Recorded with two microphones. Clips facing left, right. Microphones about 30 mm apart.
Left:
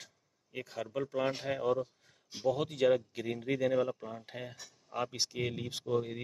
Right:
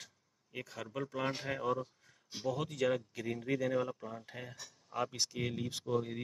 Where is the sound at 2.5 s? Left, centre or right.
Left.